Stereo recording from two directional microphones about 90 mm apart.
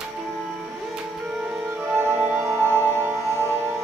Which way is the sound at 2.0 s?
25° right (ahead or behind).